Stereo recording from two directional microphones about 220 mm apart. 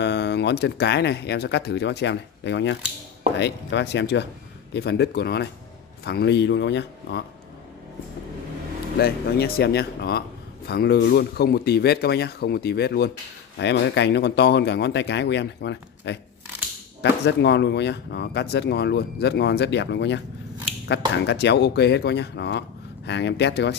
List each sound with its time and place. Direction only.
0.0 s speech: 50° left (ahead or behind)
9.0 s speech: 45° left (ahead or behind)
21.2 s speech: 50° left (ahead or behind)